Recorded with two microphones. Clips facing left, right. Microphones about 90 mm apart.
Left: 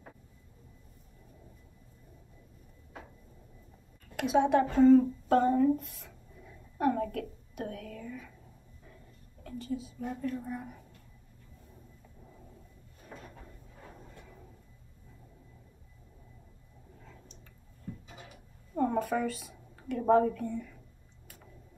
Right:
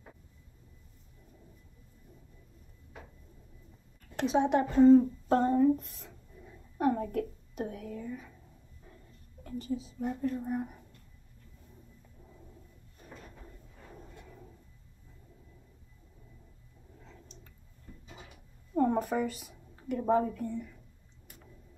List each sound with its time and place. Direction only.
4.4 s speech: 15° right (ahead or behind)
5.6 s a sound: 20° right (ahead or behind)
9.4 s a woman's voice: 15° right (ahead or behind)
18.9 s speech: 15° right (ahead or behind)